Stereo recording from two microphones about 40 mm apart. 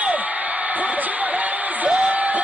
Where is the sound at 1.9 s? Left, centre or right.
Right.